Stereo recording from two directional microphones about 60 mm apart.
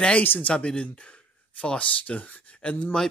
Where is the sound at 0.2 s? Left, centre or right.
Left.